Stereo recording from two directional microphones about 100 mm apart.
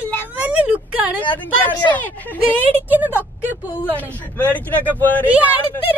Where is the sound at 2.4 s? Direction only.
20° right (ahead or behind).